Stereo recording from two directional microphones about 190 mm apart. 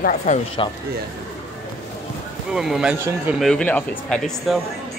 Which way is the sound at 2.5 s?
Centre (ahead or behind).